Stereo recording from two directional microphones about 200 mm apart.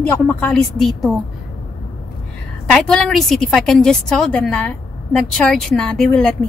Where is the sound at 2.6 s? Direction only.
5° left (ahead or behind).